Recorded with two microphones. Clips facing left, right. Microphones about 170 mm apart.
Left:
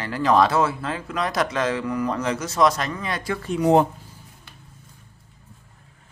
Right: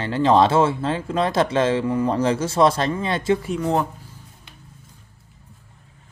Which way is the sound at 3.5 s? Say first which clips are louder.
Left 5 dB; 20° left (ahead or behind).